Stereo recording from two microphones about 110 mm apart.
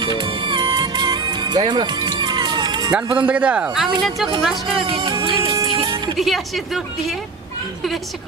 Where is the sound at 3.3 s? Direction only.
10° right (ahead or behind).